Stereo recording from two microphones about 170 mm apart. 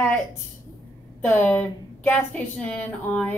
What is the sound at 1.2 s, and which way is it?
A woman's voice, 10° left (ahead or behind).